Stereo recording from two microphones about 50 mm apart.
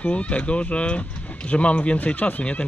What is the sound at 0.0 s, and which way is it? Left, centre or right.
Speech, left.